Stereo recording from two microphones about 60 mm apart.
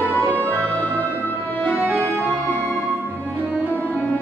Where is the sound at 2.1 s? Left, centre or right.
Left.